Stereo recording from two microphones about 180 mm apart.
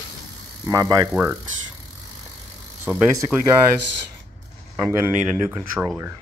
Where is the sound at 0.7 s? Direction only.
20° right (ahead or behind).